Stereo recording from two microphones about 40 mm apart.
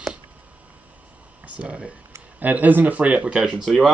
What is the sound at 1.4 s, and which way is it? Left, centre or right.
Speech, right.